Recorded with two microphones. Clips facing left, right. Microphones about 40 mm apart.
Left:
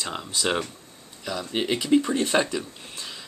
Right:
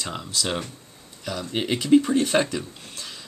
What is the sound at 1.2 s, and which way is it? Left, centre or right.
Speech, centre.